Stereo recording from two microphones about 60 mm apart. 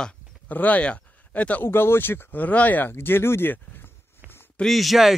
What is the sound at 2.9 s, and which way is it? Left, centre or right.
Speech, left.